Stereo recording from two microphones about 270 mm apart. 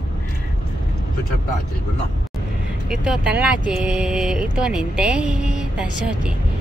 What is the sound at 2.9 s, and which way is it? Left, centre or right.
Speech, centre.